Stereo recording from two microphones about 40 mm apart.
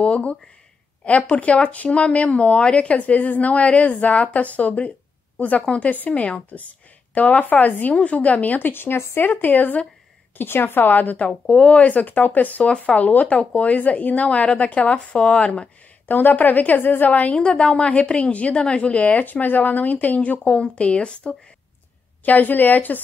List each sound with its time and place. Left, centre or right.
0.0 s a woman's voice: left
8.0 s speech: left
8.7 s speech: left
10.3 s speech: left
11.1 s speech: left
16.1 s a woman's voice: left
17.1 s speech: left
17.4 s a woman's voice: left
17.8 s speech: left
22.2 s a woman's voice: left